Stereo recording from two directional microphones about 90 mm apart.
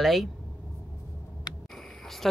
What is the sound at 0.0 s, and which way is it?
Speech, centre (ahead or behind).